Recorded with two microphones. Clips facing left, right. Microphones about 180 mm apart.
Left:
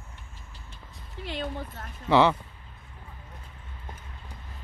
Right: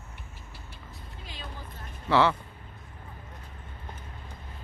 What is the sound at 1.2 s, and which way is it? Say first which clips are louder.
Speech: left 11 dB; 65° left (ahead or behind).